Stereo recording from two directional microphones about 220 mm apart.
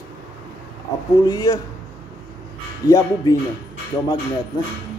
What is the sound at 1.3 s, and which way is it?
Speech, 15° left (ahead or behind).